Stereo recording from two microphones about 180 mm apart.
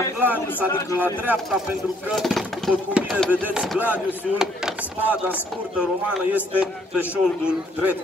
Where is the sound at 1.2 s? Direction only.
5° right (ahead or behind).